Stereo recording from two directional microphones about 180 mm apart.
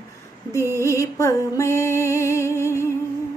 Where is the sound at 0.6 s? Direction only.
15° right (ahead or behind).